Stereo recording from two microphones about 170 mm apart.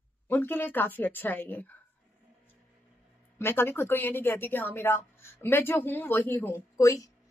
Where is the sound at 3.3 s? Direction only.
15° left (ahead or behind).